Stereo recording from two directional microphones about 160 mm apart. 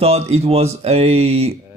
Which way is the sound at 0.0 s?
40° right (ahead or behind).